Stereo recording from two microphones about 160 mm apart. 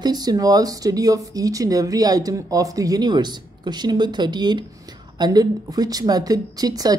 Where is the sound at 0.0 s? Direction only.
25° right (ahead or behind).